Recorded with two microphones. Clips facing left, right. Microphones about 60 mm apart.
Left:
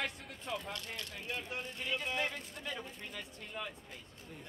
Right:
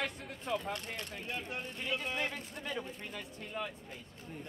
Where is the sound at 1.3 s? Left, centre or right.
Centre.